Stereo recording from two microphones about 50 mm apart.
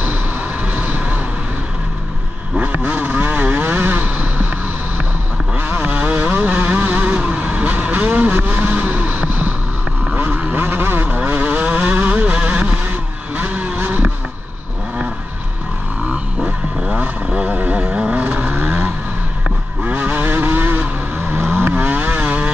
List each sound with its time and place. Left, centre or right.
0.7 s vehicle: right
2.5 s vehicle: right
5.6 s vehicle: right
10.5 s vehicle: right
11.1 s vehicle: right
13.7 s vehicle: right
16.9 s vehicle: right
20.1 s vehicle: right
21.4 s vehicle: right
21.7 s vehicle: right